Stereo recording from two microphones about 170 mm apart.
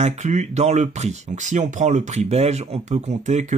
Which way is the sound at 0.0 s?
45° right (ahead or behind).